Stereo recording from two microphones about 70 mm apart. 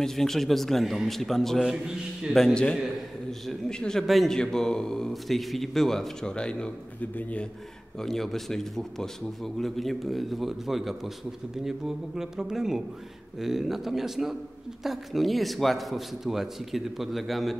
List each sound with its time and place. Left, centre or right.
0.0 s a man's voice: centre
1.6 s speech: centre
2.3 s a man's voice: centre
7.0 s a man's voice: left
8.0 s a man's voice: centre